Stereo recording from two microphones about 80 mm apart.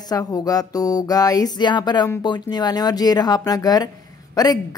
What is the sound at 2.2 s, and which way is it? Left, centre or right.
Speech, left.